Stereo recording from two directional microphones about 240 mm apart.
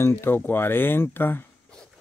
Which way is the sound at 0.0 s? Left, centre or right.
Centre.